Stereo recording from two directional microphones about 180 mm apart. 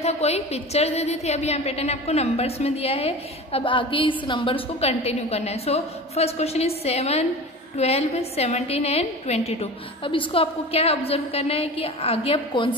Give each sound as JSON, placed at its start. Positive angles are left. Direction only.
{"t": 0.0, "sound": "a woman's voice", "side_deg": 35}